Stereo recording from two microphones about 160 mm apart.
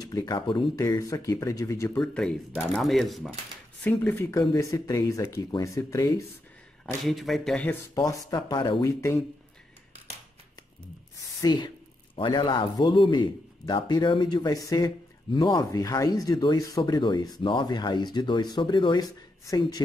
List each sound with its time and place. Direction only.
0.0 s speech: 25° left (ahead or behind)
2.0 s a man's voice: 5° left (ahead or behind)
3.8 s speech: 10° left (ahead or behind)
7.1 s a man's voice: centre (ahead or behind)
7.9 s speech: 20° left (ahead or behind)
8.8 s speech: 20° left (ahead or behind)
11.4 s speech: 30° left (ahead or behind)